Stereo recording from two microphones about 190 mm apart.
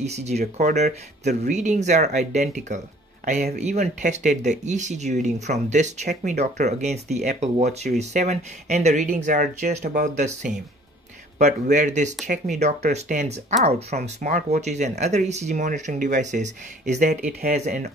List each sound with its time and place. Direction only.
0.0 s speech: 35° right (ahead or behind)
11.7 s speech: 40° right (ahead or behind)